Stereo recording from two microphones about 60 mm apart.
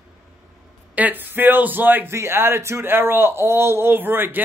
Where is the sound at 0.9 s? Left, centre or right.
Right.